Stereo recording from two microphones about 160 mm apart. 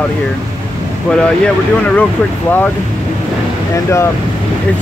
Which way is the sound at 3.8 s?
15° left (ahead or behind).